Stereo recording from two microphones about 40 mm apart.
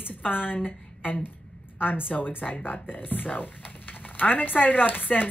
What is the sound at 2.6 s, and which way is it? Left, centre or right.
Speech, left.